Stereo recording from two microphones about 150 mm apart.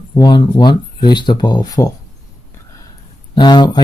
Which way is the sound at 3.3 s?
30° left (ahead or behind).